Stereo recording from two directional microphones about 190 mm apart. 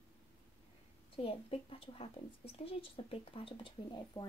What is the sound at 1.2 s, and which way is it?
A woman's voice, 30° left (ahead or behind).